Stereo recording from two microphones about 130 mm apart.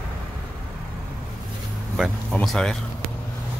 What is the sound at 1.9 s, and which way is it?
Speech, centre (ahead or behind).